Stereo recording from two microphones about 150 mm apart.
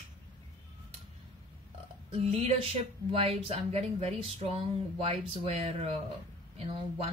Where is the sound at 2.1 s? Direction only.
40° right (ahead or behind).